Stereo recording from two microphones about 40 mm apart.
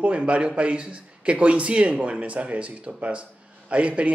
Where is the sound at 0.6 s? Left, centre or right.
Right.